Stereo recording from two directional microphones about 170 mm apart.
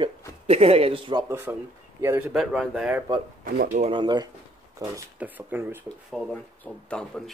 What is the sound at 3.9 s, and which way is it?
Speech, 25° right (ahead or behind).